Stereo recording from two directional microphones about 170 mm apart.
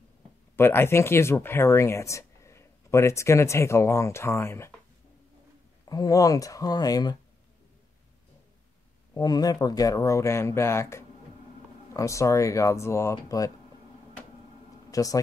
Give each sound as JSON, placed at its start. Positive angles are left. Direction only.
{"t": 0.6, "sound": "speech", "side_deg": 15}
{"t": 5.9, "sound": "speech", "side_deg": 20}
{"t": 9.1, "sound": "speech", "side_deg": 25}
{"t": 14.9, "sound": "speech", "side_deg": 20}